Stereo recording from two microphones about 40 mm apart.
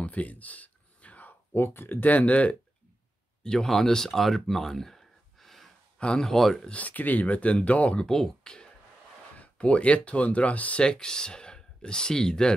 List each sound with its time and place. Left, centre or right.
0.0 s a sound: left
1.5 s speech: left
3.4 s speech: centre
5.9 s speech: left
6.2 s speech: centre
6.7 s speech: left
8.0 s speech: centre
9.4 s speech: left
10.8 s speech: left